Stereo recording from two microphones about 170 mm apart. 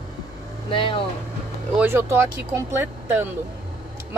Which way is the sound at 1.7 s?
10° right (ahead or behind).